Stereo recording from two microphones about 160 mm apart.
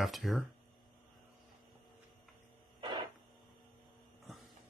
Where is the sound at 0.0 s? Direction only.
Centre (ahead or behind).